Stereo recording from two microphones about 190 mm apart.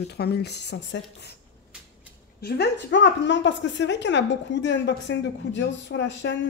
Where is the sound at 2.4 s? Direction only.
60° left (ahead or behind).